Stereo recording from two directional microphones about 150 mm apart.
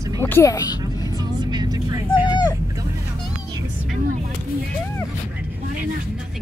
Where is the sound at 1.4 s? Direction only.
30° right (ahead or behind).